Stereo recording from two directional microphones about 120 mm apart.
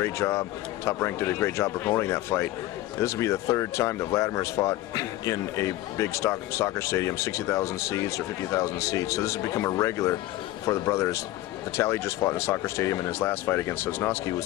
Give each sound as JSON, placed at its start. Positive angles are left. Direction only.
{"t": 0.0, "sound": "speech", "side_deg": 20}